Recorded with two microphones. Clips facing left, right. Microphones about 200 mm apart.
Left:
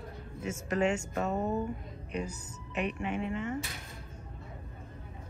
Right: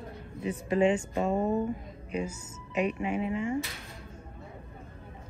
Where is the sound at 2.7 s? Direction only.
Centre (ahead or behind).